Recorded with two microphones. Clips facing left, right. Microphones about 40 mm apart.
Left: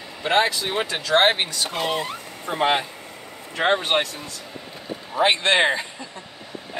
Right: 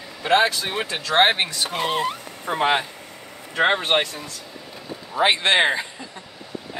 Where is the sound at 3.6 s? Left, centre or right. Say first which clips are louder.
Right 1 dB; centre.